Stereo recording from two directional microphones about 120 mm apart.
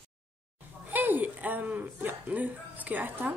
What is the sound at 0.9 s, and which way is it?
Speech, 15° right (ahead or behind).